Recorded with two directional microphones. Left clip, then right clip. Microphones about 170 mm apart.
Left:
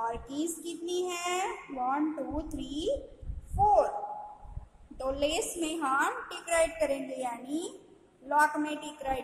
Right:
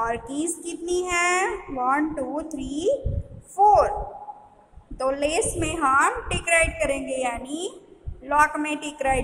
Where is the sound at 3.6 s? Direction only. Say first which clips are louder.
Right 8 dB; 25° right (ahead or behind).